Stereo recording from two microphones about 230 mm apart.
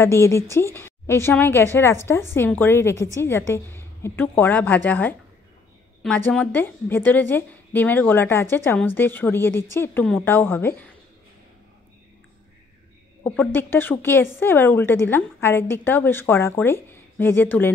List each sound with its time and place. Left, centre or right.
0.0 s a woman's voice: centre
13.2 s a woman's voice: centre